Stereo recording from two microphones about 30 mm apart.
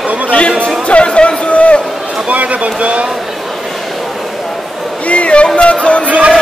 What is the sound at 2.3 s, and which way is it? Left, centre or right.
Speech, right.